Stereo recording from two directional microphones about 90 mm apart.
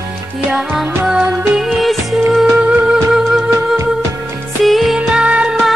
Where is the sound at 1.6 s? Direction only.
Centre (ahead or behind).